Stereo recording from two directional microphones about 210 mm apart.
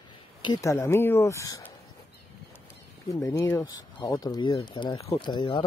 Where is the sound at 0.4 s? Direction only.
20° left (ahead or behind).